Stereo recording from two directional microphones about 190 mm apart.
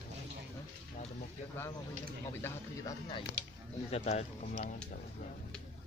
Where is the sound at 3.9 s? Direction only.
35° left (ahead or behind).